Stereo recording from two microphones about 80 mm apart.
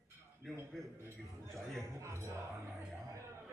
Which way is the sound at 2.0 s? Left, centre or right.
Right.